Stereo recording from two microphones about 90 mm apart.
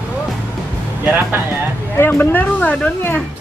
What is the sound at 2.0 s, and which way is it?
Speech, 20° left (ahead or behind).